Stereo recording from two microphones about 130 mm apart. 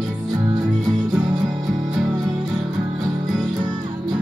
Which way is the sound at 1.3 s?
30° right (ahead or behind).